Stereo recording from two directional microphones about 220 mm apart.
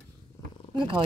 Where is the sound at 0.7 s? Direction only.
20° right (ahead or behind).